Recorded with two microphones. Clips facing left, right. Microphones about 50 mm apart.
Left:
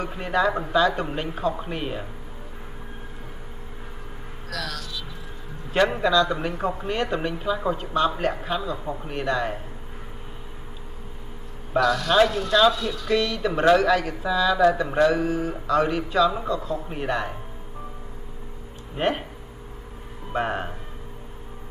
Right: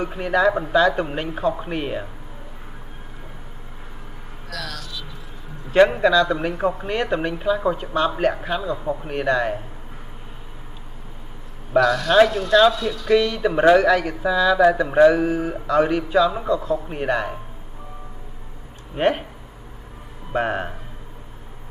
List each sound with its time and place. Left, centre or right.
0.2 s speech: centre
4.5 s a sound: centre
5.9 s speech: centre
8.2 s speech: right
9.1 s speech: centre
11.8 s speech: centre
18.9 s speech: centre
20.3 s speech: centre